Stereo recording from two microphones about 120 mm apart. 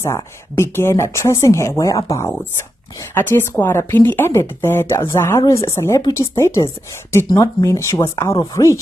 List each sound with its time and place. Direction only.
0.0 s a woman's voice: 25° left (ahead or behind)